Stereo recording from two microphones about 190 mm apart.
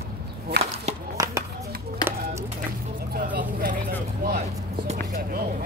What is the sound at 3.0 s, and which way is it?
Vehicle, 55° right (ahead or behind).